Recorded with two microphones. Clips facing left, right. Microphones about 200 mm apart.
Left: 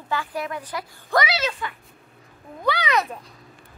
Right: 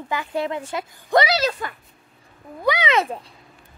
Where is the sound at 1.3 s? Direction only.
40° right (ahead or behind).